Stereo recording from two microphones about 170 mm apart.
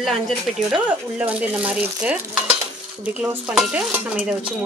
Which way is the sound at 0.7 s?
10° right (ahead or behind).